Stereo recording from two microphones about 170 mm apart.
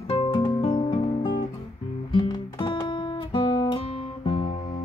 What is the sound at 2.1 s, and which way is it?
Guitar, 30° left (ahead or behind).